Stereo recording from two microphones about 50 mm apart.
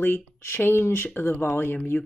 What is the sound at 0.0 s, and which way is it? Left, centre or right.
Speech, left.